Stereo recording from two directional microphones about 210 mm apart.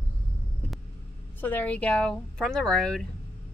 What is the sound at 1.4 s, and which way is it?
Speech, 10° left (ahead or behind).